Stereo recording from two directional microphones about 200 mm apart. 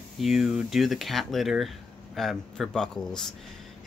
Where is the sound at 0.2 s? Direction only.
Centre (ahead or behind).